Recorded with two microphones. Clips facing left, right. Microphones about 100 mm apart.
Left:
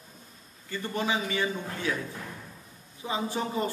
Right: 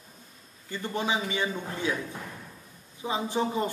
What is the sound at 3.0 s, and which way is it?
Speech, 20° right (ahead or behind).